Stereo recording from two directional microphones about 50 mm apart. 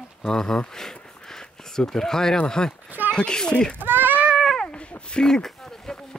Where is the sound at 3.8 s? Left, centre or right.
Right.